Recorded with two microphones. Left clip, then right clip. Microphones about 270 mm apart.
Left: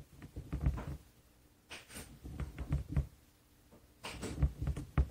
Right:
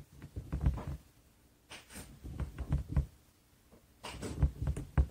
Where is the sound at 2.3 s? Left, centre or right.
Right.